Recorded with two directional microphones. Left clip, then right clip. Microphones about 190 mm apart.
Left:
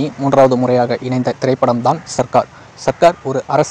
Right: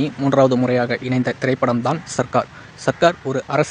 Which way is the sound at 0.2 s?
Centre (ahead or behind).